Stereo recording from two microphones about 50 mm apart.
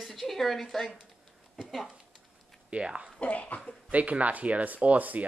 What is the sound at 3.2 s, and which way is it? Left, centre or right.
Cough, left.